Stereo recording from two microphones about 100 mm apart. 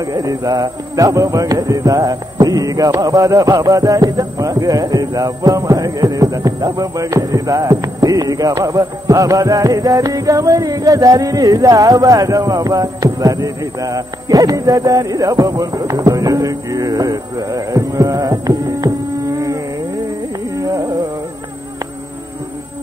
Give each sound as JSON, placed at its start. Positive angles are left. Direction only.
{"t": 0.0, "sound": "music", "side_deg": -35}
{"t": 20.6, "sound": "carnatic music", "side_deg": -35}